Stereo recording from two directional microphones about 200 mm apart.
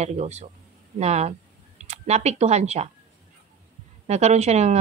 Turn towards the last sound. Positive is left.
turn(degrees=-35)  # may be behind; listen again after turning